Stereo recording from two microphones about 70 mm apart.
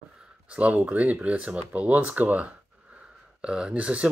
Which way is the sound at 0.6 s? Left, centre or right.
Centre.